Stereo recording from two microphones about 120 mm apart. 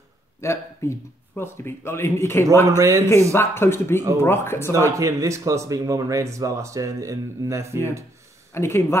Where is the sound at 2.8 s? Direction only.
25° right (ahead or behind).